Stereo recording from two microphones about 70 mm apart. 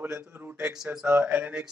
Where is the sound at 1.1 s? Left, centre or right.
Right.